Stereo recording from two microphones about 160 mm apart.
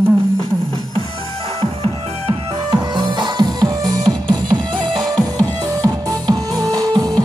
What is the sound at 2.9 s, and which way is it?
Music, 30° right (ahead or behind).